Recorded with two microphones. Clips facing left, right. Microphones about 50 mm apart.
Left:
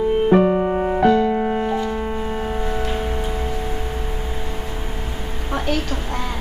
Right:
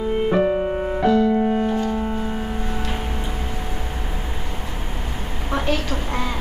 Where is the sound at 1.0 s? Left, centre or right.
Left.